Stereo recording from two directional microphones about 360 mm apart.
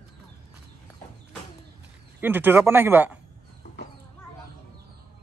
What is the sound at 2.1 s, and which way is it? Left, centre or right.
Speech, centre.